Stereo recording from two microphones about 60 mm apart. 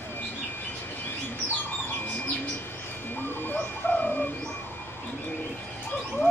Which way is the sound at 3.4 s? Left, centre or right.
Left.